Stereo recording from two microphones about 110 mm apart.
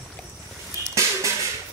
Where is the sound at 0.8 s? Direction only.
30° left (ahead or behind).